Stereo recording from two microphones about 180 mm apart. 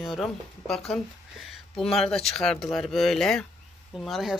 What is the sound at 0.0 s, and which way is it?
Speech, centre (ahead or behind).